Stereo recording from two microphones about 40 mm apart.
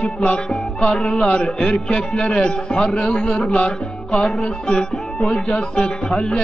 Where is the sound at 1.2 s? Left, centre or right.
Left.